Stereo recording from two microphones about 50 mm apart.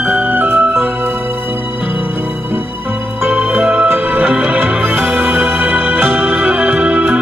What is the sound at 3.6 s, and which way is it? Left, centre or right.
Music, right.